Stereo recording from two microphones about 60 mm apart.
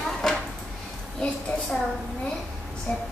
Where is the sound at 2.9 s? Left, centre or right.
Left.